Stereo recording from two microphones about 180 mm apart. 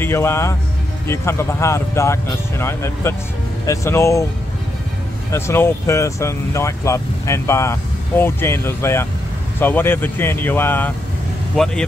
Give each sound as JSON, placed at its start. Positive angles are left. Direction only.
{"t": 0.0, "sound": "speech", "side_deg": 15}
{"t": 5.3, "sound": "speech", "side_deg": 15}